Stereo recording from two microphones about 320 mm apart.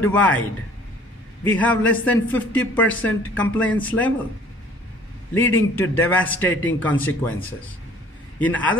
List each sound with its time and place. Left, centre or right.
0.0 s speech: centre
1.4 s speech: centre
5.3 s a man's voice: centre
8.4 s speech: centre